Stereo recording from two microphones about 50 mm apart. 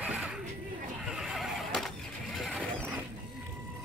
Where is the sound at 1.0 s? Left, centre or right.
Centre.